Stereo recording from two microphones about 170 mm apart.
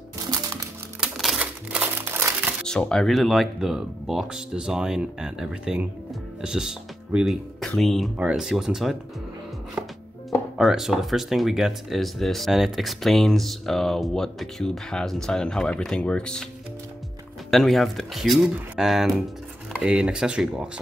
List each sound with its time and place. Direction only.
0.3 s music: 20° right (ahead or behind)
1.0 s crumpling: centre (ahead or behind)
2.6 s speech: 5° left (ahead or behind)
10.6 s speech: centre (ahead or behind)
17.5 s speech: centre (ahead or behind)